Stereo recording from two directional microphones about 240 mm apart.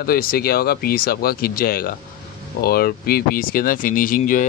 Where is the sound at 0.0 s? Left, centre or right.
Left.